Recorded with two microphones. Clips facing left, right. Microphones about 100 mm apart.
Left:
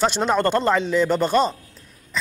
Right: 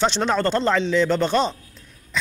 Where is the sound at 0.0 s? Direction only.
10° left (ahead or behind).